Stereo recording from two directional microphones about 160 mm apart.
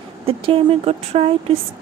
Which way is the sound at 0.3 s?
35° right (ahead or behind).